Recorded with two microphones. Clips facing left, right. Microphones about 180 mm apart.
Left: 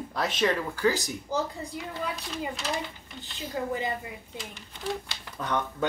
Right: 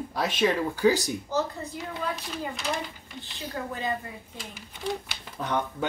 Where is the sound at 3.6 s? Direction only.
15° left (ahead or behind).